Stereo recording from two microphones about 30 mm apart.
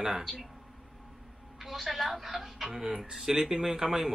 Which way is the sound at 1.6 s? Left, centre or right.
Centre.